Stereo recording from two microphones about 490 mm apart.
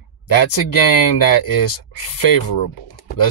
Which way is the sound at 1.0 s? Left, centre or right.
Left.